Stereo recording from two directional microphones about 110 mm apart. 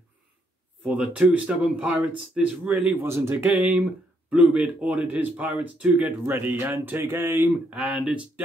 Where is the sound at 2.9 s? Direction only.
25° right (ahead or behind).